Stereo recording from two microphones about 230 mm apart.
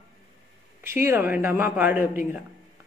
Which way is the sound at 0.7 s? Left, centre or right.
Centre.